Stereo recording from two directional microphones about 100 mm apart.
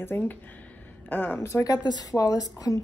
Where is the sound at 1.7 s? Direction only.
40° left (ahead or behind).